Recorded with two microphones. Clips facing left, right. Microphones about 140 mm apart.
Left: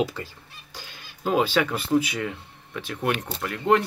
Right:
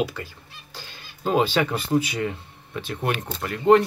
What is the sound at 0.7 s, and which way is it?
Speech, 10° left (ahead or behind).